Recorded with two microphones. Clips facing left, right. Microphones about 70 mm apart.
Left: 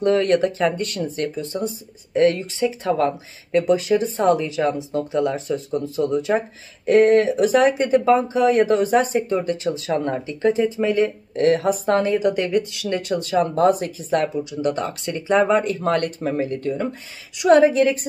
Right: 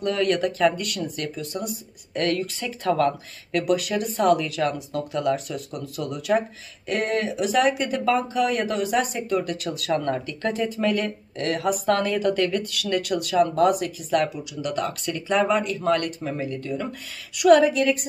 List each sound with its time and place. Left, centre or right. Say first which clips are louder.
0.0 s speech: left 5 dB; left